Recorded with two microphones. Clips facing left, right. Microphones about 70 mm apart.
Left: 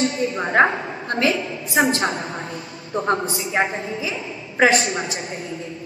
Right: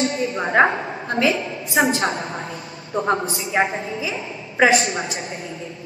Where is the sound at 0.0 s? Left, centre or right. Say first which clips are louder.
Even; right.